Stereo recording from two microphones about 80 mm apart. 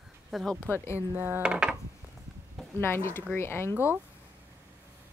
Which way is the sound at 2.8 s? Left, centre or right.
Left.